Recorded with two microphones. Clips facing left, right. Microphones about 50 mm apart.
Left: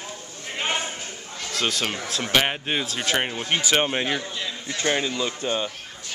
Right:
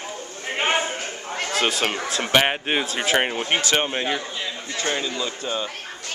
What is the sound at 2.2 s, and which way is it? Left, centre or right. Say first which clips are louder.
Speech: right 3 dB; centre.